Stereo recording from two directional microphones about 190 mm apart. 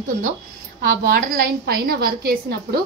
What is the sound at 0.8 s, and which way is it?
A woman's voice, 50° right (ahead or behind).